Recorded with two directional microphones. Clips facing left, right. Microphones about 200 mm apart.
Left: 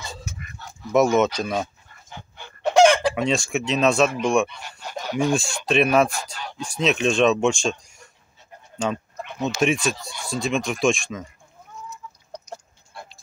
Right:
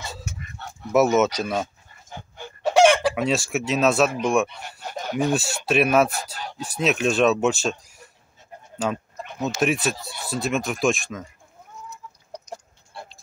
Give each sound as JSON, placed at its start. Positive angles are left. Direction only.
{"t": 0.6, "sound": "dog", "side_deg": -60}
{"t": 0.9, "sound": "speech", "side_deg": -5}
{"t": 2.0, "sound": "dog", "side_deg": -45}
{"t": 2.7, "sound": "chicken", "side_deg": -5}
{"t": 4.2, "sound": "speech", "side_deg": -5}
{"t": 4.6, "sound": "a sound", "side_deg": -50}
{"t": 5.2, "sound": "speech", "side_deg": -5}